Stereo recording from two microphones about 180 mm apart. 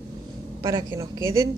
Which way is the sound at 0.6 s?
20° right (ahead or behind).